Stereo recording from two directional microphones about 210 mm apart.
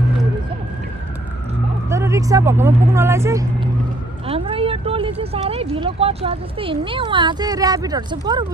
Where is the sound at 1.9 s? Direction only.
15° right (ahead or behind).